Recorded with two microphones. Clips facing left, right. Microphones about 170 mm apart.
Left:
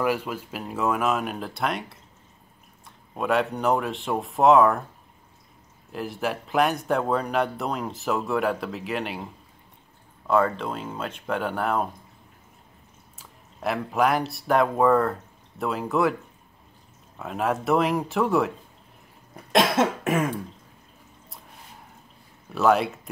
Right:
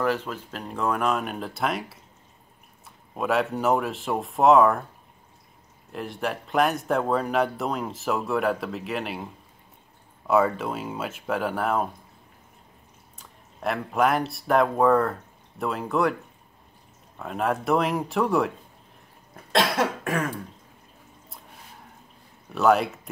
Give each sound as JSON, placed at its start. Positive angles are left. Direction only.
{"t": 0.0, "sound": "speech", "side_deg": 10}
{"t": 3.2, "sound": "speech", "side_deg": 0}
{"t": 5.9, "sound": "speech", "side_deg": 0}
{"t": 13.2, "sound": "speech", "side_deg": 0}
{"t": 17.2, "sound": "speech", "side_deg": 0}
{"t": 19.5, "sound": "cough", "side_deg": 20}
{"t": 22.5, "sound": "speech", "side_deg": 0}